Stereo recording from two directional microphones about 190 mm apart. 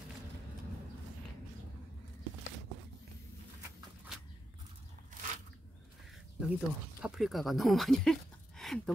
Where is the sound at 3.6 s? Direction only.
5° right (ahead or behind).